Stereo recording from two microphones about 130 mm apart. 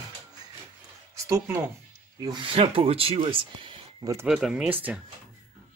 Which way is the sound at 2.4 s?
45° right (ahead or behind).